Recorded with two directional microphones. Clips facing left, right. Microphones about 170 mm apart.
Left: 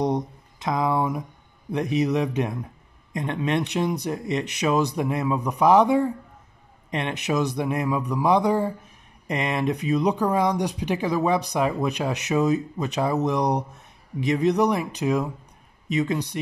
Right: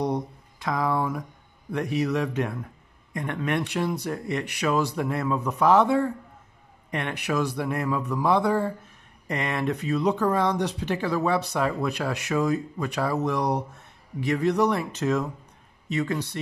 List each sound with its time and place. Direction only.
0.0 s speech: 20° left (ahead or behind)